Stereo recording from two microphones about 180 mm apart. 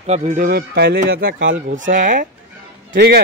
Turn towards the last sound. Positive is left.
turn(degrees=-65)  # may be behind; listen again after turning